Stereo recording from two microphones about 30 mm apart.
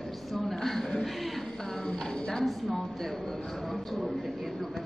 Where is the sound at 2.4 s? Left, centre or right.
Centre.